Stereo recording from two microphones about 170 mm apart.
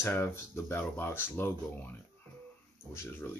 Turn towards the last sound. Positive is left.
turn(degrees=15)  # may be behind; listen again after turning